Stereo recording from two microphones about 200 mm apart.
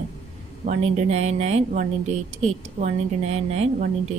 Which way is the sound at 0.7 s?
35° right (ahead or behind).